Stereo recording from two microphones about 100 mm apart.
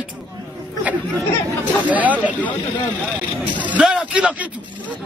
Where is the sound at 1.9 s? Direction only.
15° right (ahead or behind).